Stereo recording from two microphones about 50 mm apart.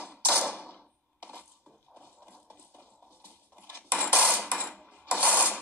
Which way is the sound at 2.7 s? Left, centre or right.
Left.